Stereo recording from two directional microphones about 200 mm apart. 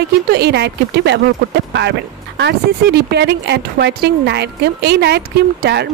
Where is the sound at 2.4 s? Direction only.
55° right (ahead or behind).